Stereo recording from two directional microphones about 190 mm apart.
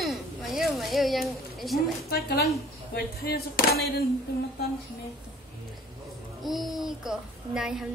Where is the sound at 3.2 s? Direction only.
55° left (ahead or behind).